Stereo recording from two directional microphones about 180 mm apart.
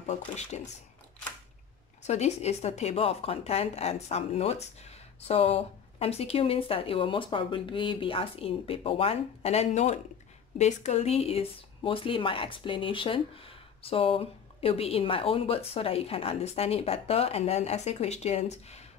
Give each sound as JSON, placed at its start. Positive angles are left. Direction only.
{"t": 0.1, "sound": "speech", "side_deg": 40}
{"t": 2.0, "sound": "speech", "side_deg": 40}